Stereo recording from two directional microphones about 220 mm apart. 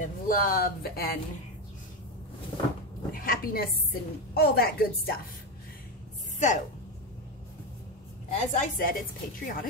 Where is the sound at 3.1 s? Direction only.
40° left (ahead or behind).